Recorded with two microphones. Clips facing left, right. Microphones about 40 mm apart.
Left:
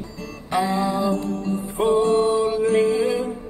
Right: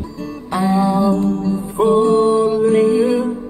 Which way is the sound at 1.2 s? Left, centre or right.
Right.